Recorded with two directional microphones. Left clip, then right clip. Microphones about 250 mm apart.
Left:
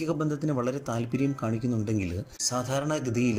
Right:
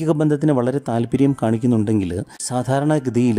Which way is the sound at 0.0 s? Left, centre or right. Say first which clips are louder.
Right 11 dB; right.